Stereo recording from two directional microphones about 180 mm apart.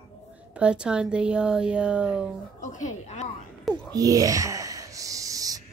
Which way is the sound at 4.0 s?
20° right (ahead or behind).